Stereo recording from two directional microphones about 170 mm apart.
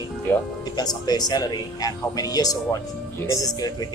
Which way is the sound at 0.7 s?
25° left (ahead or behind).